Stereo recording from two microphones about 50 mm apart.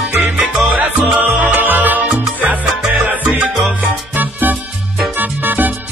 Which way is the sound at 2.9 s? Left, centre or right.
Right.